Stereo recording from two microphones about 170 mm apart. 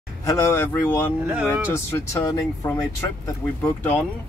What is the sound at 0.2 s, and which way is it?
Speech, 15° left (ahead or behind).